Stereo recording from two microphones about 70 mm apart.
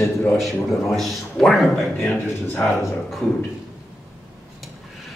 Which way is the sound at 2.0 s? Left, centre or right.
Left.